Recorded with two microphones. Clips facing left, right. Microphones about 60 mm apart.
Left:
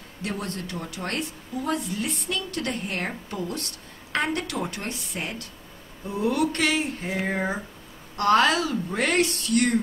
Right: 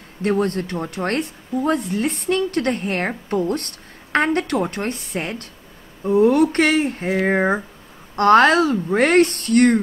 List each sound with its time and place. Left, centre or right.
0.2 s speech: right